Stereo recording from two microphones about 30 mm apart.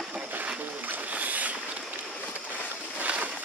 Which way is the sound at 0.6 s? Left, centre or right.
Right.